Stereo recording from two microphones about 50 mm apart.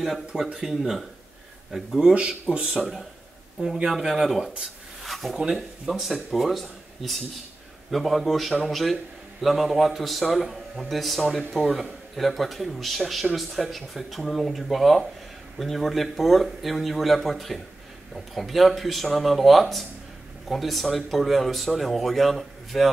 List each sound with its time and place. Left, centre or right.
0.6 s a man's voice: centre
2.1 s speech: right
2.8 s a man's voice: centre
5.0 s zipper: centre
5.5 s a man's voice: centre